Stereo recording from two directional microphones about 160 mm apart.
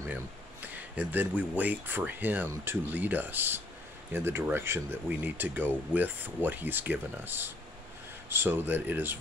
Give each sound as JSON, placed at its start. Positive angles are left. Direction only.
{"t": 0.1, "sound": "speech", "side_deg": -10}